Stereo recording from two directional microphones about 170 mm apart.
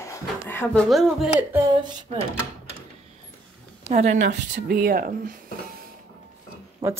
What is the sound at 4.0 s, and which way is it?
Speech, 45° right (ahead or behind).